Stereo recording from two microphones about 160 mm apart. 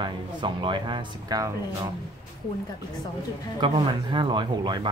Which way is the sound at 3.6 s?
30° right (ahead or behind).